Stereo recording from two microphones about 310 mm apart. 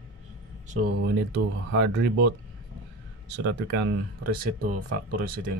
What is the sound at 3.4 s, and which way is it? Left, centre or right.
Speech, right.